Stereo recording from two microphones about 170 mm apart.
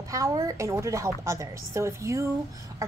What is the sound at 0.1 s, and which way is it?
A woman's voice, 20° right (ahead or behind).